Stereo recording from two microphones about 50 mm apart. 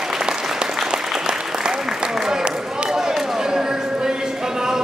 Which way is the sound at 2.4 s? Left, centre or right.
Centre.